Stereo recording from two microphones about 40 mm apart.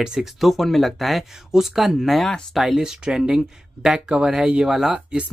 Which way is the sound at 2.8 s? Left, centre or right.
Right.